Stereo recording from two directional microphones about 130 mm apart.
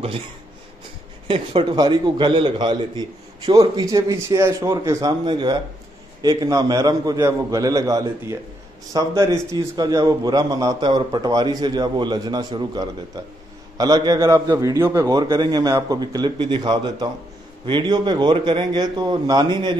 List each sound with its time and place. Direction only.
1.2 s a man's voice: 40° right (ahead or behind)